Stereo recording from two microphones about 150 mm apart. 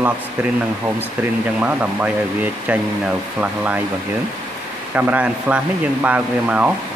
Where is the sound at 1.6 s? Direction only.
10° right (ahead or behind).